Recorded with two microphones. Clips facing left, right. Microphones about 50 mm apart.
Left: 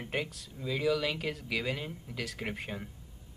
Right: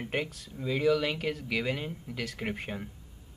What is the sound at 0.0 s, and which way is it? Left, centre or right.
Speech, centre.